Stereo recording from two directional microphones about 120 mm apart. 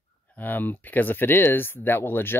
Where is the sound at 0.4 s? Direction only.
15° left (ahead or behind).